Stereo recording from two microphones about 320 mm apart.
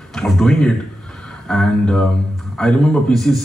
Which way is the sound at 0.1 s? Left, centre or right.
Centre.